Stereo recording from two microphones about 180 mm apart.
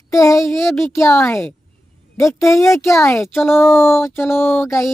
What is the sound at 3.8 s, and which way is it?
Speech, 15° left (ahead or behind).